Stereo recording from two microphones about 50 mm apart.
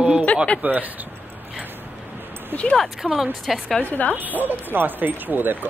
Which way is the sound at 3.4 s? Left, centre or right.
Centre.